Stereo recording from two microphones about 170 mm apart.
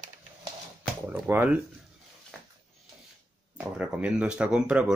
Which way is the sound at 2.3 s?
Centre (ahead or behind).